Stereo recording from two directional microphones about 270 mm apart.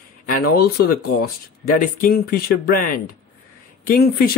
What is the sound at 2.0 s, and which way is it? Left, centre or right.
Speech, left.